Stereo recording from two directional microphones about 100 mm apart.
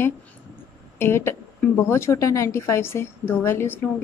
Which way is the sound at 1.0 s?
25° left (ahead or behind).